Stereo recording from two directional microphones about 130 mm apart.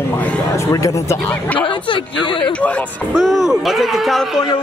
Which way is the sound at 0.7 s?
25° left (ahead or behind).